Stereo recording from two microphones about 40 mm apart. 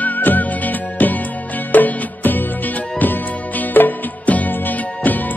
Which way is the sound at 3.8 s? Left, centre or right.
Left.